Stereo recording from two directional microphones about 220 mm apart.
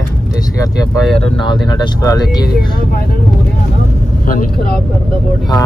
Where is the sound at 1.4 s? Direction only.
20° left (ahead or behind).